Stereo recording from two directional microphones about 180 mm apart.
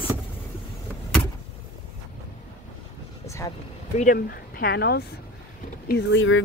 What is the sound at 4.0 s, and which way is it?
Speech, 55° left (ahead or behind).